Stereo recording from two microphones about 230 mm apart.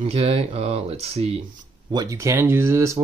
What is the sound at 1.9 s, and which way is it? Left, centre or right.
Speech, centre.